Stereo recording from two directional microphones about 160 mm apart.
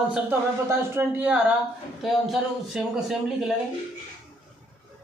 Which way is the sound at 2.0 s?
Centre (ahead or behind).